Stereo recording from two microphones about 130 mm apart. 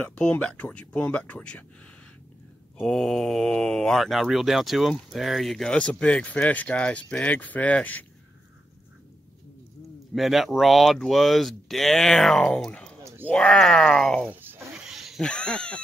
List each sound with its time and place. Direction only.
0.0 s speech: 10° left (ahead or behind)
2.8 s speech: 5° left (ahead or behind)
10.1 s speech: centre (ahead or behind)
14.4 s a sound: 10° right (ahead or behind); by 15.8 s 5° left (ahead or behind)